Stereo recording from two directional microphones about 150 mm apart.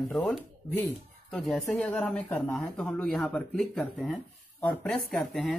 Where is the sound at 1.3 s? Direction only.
Centre (ahead or behind).